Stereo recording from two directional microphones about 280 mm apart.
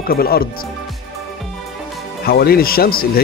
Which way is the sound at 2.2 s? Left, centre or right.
Left.